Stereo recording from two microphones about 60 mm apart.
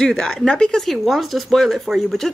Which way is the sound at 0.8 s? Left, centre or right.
Centre.